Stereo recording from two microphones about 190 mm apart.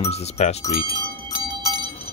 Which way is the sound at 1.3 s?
25° right (ahead or behind).